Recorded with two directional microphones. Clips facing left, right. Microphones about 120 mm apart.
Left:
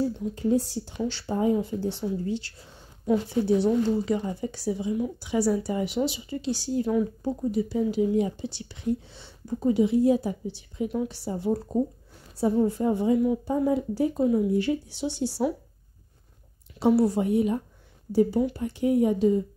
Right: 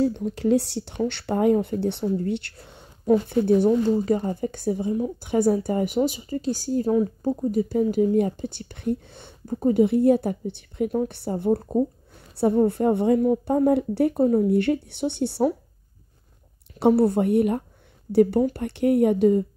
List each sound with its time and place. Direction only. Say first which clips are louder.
0.0 s speech: right 4 dB; 70° right (ahead or behind)
3.1 s speech: right 4 dB; 50° right (ahead or behind)
13.2 s speech: right 4 dB; 45° right (ahead or behind); by 14.2 s 65° right (ahead or behind)
14.2 s speech: right 3 dB; 45° right (ahead or behind)
14.5 s speech: right 4 dB; 60° right (ahead or behind)
16.8 s speech: right 3 dB; 55° right (ahead or behind)